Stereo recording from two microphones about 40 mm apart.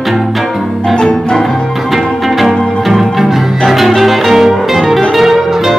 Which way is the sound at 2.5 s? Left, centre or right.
Left.